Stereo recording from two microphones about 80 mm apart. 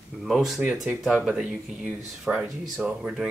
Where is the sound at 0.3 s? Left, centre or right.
Centre.